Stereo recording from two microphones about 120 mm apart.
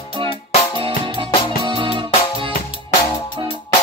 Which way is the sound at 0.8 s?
45° right (ahead or behind).